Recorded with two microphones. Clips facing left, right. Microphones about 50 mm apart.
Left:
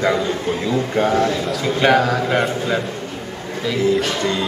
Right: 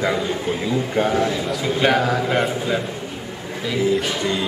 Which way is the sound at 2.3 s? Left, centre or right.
Centre.